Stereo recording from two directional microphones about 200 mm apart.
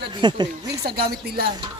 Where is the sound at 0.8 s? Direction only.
50° right (ahead or behind).